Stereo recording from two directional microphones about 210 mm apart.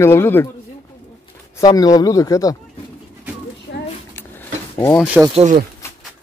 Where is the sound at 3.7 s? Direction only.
50° left (ahead or behind).